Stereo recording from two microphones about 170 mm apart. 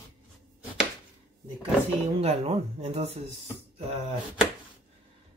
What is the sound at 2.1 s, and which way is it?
Speech, 35° right (ahead or behind).